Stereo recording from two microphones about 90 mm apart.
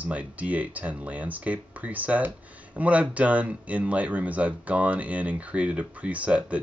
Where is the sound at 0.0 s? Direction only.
15° right (ahead or behind).